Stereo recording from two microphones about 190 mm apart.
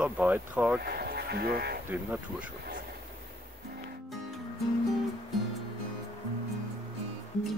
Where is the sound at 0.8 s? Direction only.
55° right (ahead or behind).